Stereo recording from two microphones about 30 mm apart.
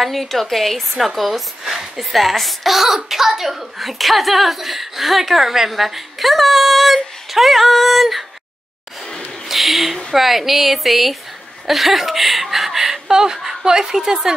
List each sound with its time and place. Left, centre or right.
0.0 s speech: centre
9.5 s a sound: centre
10.1 s speech: centre
13.4 s speech: centre
13.7 s a woman's voice: right